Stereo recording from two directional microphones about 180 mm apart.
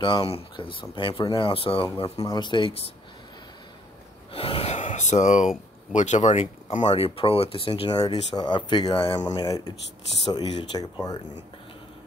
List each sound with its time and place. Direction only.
0.0 s speech: 30° left (ahead or behind)
4.3 s speech: 30° left (ahead or behind)